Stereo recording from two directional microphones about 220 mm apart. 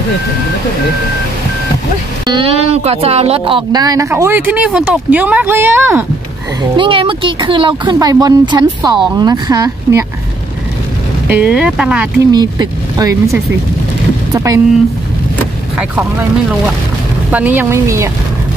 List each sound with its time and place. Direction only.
2.3 s speech: 25° right (ahead or behind); by 6.0 s 10° right (ahead or behind)
6.8 s speech: 25° right (ahead or behind)
11.2 s speech: 5° right (ahead or behind)
12.3 s speech: 20° right (ahead or behind)
17.3 s speech: 5° right (ahead or behind)